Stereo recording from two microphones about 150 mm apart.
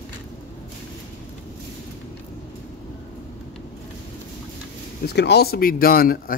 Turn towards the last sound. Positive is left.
turn(degrees=80)